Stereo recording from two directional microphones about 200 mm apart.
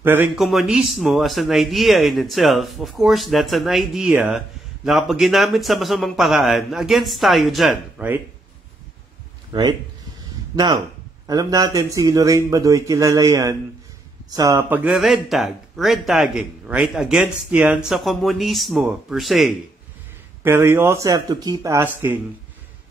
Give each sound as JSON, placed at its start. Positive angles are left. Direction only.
{"t": 0.0, "sound": "speech", "side_deg": -10}
{"t": 9.5, "sound": "a man's voice", "side_deg": -25}
{"t": 20.4, "sound": "a man's voice", "side_deg": -10}